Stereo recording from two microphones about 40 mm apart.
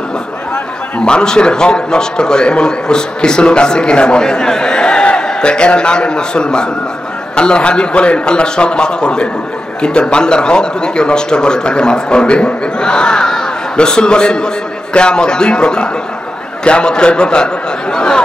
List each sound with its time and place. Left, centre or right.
1.0 s a man's voice: left